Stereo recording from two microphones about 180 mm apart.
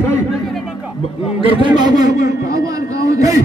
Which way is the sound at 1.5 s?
25° right (ahead or behind).